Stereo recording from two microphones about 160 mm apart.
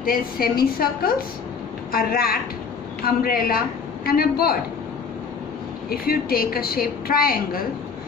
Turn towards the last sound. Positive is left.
turn(degrees=65)  # may be behind; listen again after turning